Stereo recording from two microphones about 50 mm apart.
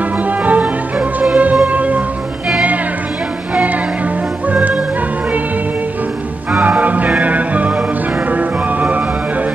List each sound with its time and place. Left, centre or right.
0.4 s music: right
4.5 s music: right
6.6 s music: right